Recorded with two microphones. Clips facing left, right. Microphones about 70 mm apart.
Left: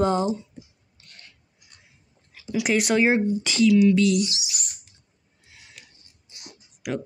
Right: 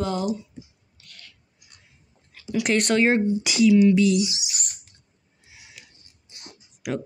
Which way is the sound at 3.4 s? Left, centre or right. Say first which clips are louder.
Right 1 dB; centre.